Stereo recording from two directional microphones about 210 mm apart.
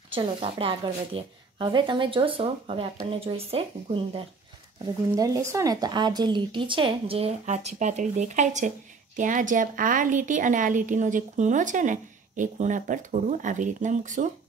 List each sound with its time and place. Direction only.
0.1 s a woman's voice: 25° right (ahead or behind)
5.1 s speech: 15° right (ahead or behind); by 14.3 s 35° right (ahead or behind)